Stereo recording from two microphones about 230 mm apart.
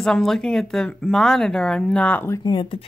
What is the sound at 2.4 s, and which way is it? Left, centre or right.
Speech, left.